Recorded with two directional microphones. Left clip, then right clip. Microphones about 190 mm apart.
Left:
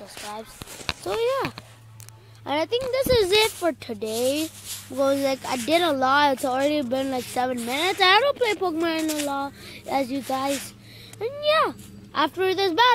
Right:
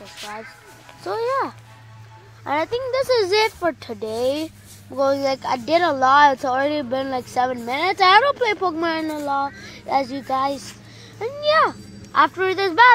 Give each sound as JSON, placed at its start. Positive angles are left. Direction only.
{"t": 1.0, "sound": "speech", "side_deg": 30}